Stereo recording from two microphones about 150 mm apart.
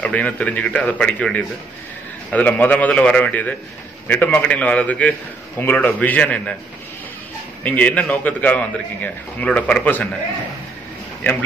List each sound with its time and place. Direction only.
0.0 s a man's voice: 10° left (ahead or behind)
7.6 s a man's voice: 10° left (ahead or behind)